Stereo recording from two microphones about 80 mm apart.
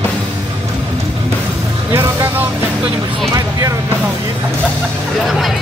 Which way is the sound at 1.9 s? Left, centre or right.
Right.